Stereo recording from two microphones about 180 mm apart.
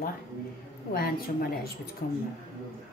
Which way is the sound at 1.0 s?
55° left (ahead or behind).